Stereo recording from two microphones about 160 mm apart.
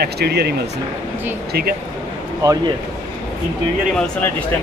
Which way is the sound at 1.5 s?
70° right (ahead or behind).